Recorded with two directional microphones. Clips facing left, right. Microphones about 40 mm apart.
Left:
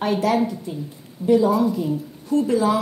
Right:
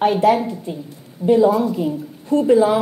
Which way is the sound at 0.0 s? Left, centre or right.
Right.